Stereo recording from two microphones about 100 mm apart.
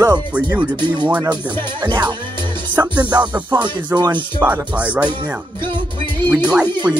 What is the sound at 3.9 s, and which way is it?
Speech, 30° right (ahead or behind).